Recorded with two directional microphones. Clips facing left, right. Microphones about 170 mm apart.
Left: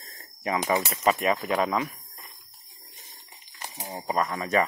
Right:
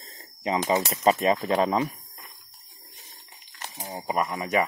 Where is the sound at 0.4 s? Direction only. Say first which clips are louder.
Right 2 dB; 20° right (ahead or behind).